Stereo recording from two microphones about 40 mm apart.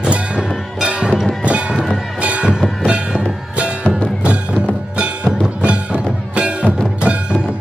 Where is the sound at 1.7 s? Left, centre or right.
Centre.